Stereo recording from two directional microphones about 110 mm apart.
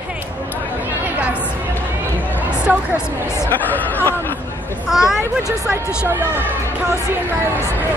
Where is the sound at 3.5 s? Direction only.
15° left (ahead or behind).